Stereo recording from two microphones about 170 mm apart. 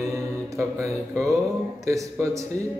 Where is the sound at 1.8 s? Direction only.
20° right (ahead or behind).